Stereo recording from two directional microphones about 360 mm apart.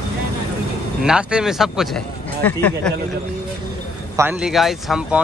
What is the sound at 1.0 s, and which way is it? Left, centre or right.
Speech, centre.